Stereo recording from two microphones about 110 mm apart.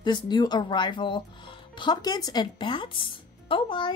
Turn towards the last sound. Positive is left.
turn(degrees=50)  # may be behind; listen again after turning